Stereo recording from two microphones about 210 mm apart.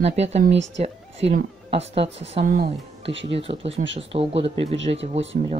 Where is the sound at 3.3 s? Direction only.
25° right (ahead or behind).